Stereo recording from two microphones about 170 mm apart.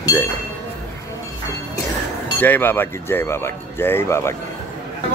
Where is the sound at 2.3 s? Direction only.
10° left (ahead or behind).